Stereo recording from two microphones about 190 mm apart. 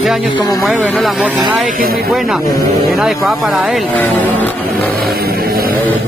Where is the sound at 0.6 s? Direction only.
Centre (ahead or behind).